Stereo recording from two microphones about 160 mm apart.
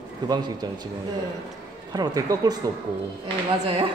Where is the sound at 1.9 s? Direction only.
25° right (ahead or behind).